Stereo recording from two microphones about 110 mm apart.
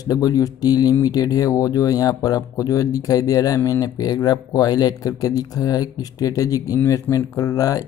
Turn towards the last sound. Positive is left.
turn(degrees=30)  # may be behind; listen again after turning